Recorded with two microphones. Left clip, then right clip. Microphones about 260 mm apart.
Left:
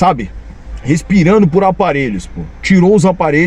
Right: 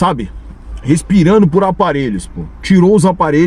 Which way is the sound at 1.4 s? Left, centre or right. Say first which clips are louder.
Left 1 dB; centre.